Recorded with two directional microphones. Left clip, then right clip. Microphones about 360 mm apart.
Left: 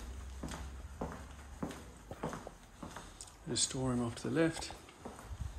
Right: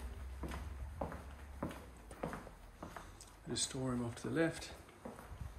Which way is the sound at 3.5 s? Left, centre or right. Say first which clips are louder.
Left 4 dB; centre.